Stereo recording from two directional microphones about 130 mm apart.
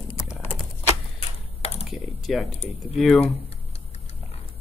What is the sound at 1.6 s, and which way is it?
Computer keyboard, 50° left (ahead or behind).